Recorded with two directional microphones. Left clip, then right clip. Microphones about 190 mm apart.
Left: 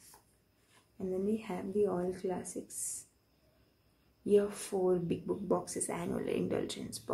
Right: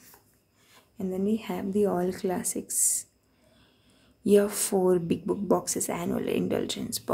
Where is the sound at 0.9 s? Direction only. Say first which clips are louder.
Right 5 dB; 25° right (ahead or behind).